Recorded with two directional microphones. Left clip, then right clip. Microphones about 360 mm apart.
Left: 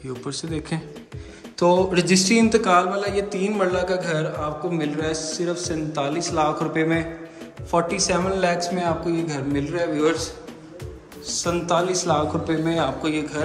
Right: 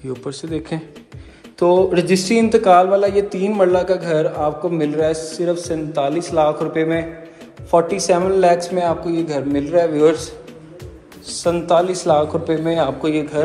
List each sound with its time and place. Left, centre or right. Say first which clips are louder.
0.1 s a man's voice: right 4 dB; centre